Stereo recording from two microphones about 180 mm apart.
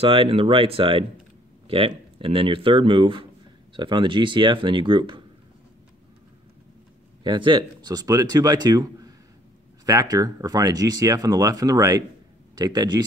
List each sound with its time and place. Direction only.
0.0 s speech: 30° right (ahead or behind)
7.2 s speech: 25° right (ahead or behind)